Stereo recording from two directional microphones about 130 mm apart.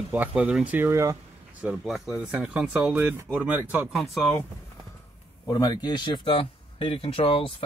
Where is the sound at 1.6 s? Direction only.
5° right (ahead or behind).